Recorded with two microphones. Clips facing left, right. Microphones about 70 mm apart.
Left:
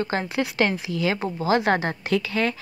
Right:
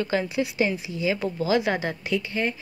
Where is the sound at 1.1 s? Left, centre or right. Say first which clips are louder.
Even; left.